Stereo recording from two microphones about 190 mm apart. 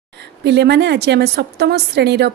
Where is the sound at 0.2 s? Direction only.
65° right (ahead or behind).